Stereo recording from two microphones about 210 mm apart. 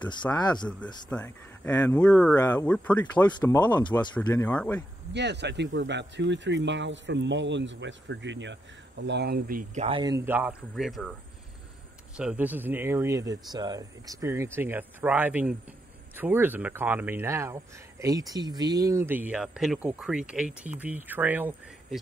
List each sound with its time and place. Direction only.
0.1 s speech: 20° left (ahead or behind)
1.1 s speech: 5° left (ahead or behind)
3.3 s speech: 20° left (ahead or behind)
5.1 s speech: 55° right (ahead or behind)
9.8 s speech: 20° right (ahead or behind); by 11.1 s centre (ahead or behind)
12.2 s speech: 5° right (ahead or behind)